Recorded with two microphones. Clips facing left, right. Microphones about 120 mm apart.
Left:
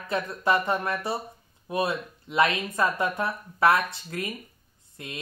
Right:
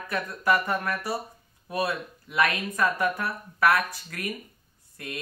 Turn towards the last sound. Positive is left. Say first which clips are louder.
# right 2 dB
turn(degrees=20)  # may be behind; listen again after turning